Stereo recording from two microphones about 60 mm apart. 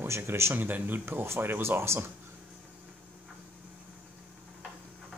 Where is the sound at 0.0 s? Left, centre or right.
Right.